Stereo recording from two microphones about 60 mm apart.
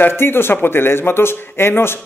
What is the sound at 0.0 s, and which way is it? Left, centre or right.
Speech, left.